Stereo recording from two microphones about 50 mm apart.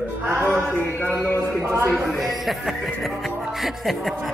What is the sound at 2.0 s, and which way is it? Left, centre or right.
Music, centre.